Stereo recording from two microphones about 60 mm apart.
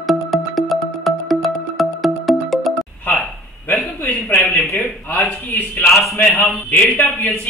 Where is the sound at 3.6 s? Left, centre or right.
Left.